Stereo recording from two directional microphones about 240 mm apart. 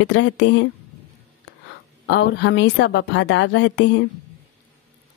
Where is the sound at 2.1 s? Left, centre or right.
Left.